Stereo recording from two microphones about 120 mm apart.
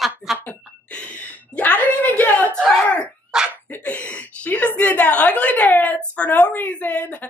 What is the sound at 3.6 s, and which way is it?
A woman's voice, 10° left (ahead or behind).